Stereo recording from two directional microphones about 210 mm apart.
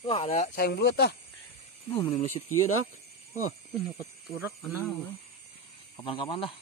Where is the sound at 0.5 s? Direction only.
50° left (ahead or behind).